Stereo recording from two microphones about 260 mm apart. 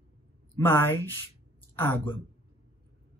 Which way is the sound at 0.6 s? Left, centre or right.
Centre.